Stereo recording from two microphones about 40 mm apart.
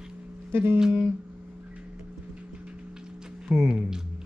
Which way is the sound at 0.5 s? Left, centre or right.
Right.